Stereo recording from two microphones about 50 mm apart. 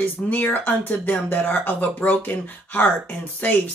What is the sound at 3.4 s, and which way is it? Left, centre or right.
Speech, left.